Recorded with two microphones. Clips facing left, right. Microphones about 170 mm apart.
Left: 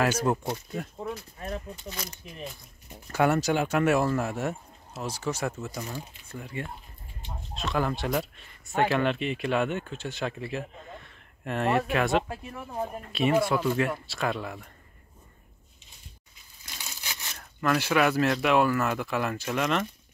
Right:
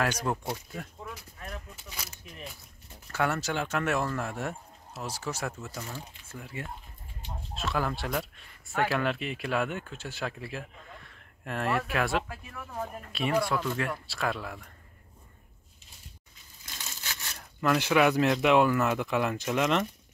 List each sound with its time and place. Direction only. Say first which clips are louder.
0.0 s speech: left 4 dB; 5° left (ahead or behind)
0.9 s a sound: left 8 dB; 30° left (ahead or behind)
1.8 s speech: left 6 dB; 5° right (ahead or behind)
2.9 s speech: left 6 dB; 15° left (ahead or behind); by 5.7 s centre (ahead or behind)
5.7 s speech: left 4 dB; 15° left (ahead or behind)
6.2 s speech: left 3 dB; 5° right (ahead or behind)
11.0 s a sound: left 3 dB; centre (ahead or behind)
11.9 s speech: left 4 dB; centre (ahead or behind)
12.2 s speech: left 4 dB; 25° left (ahead or behind)
13.0 s speech: left 4 dB; 5° left (ahead or behind)
16.6 s crushing: left 1 dB; 15° left (ahead or behind)
17.4 s speech: even; 10° right (ahead or behind)